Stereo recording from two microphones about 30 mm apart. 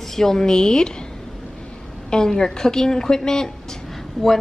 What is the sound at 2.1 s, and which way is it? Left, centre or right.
A woman's voice, left.